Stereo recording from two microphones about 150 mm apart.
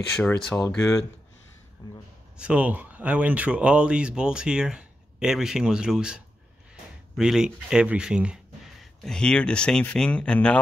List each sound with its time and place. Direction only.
0.2 s speech: 5° left (ahead or behind)
1.8 s a sound: 25° left (ahead or behind)
2.3 s speech: 5° right (ahead or behind)
9.0 s speech: 5° left (ahead or behind)